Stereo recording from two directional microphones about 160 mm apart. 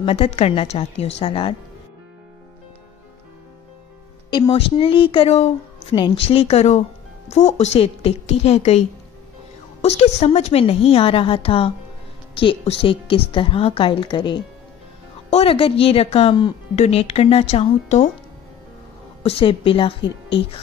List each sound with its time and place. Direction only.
0.0 s a woman's voice: 40° left (ahead or behind)
4.3 s a woman's voice: 30° left (ahead or behind)
15.2 s a woman's voice: 40° left (ahead or behind)
19.2 s a woman's voice: 35° left (ahead or behind)